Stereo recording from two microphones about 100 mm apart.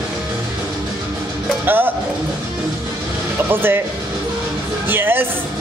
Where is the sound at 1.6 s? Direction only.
20° right (ahead or behind).